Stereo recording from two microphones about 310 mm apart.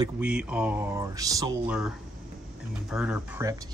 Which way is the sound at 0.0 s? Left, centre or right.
Centre.